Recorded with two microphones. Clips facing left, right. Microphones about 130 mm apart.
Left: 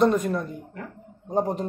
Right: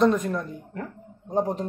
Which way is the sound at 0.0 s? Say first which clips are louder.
Even; 5° left (ahead or behind).